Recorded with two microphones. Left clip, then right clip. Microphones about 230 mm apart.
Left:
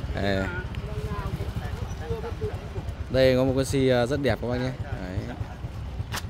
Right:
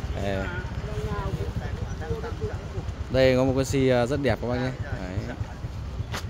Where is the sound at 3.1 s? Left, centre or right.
Centre.